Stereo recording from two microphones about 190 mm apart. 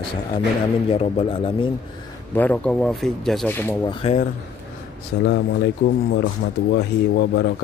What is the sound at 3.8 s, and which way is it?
Speech, 30° left (ahead or behind).